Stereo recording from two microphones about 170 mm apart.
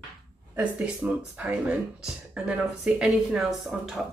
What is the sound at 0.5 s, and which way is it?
Speech, 10° right (ahead or behind).